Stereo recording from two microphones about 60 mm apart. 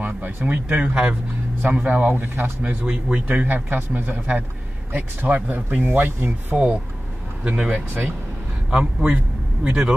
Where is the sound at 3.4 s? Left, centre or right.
Right.